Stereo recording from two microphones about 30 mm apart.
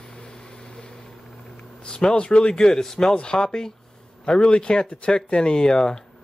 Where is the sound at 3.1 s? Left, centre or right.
Left.